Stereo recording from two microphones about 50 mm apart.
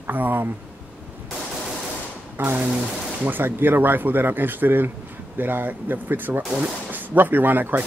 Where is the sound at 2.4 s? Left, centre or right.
Right.